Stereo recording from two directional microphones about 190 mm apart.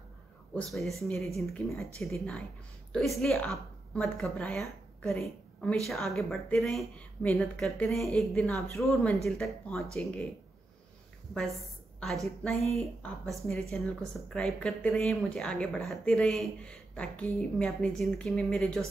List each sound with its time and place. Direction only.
0.6 s a woman's voice: centre (ahead or behind)
12.0 s speech: centre (ahead or behind)